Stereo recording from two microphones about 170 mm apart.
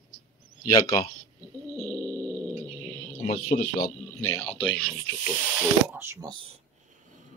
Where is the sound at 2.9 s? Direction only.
45° left (ahead or behind).